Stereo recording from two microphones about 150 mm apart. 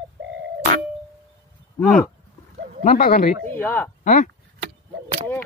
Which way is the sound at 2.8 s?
70° left (ahead or behind).